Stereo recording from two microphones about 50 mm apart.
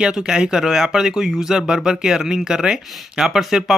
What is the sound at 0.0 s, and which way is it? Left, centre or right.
Speech, centre.